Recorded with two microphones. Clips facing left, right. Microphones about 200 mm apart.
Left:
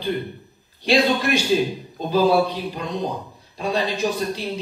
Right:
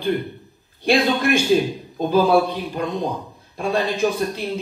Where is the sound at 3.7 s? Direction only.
50° right (ahead or behind).